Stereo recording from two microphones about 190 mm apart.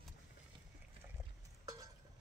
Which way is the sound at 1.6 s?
20° right (ahead or behind).